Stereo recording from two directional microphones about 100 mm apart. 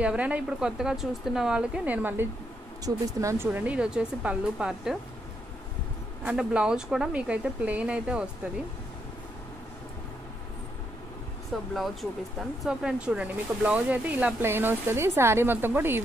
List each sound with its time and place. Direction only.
0.0 s speech: 10° right (ahead or behind)
2.8 s speech: 30° right (ahead or behind); by 4.9 s 5° right (ahead or behind)
6.2 s speech: 10° right (ahead or behind)
11.5 s speech: centre (ahead or behind); by 16.0 s 20° right (ahead or behind)